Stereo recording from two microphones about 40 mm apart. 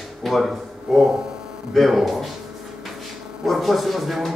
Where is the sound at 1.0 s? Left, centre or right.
Centre.